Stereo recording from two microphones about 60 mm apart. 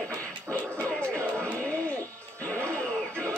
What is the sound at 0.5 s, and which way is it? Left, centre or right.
Music, left.